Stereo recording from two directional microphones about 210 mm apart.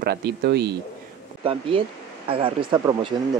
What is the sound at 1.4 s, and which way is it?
Speech, 25° right (ahead or behind).